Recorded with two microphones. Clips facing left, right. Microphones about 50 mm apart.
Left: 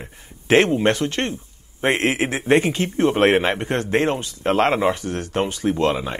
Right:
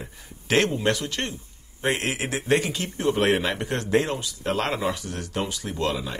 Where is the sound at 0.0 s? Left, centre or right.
Left.